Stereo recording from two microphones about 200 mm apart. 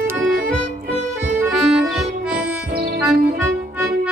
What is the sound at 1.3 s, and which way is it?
Accordion, 5° right (ahead or behind).